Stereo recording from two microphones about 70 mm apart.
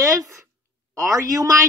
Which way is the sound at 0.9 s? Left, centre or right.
Right.